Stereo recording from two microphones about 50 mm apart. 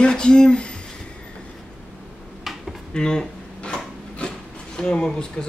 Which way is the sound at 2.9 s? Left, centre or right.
Centre.